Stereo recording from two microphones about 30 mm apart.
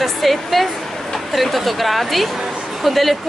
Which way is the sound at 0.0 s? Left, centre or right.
Centre.